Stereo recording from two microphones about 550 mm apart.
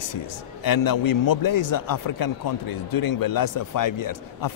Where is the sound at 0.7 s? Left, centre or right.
Left.